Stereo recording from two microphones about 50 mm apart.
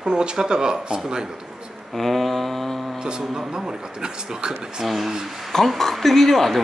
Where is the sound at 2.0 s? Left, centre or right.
Centre.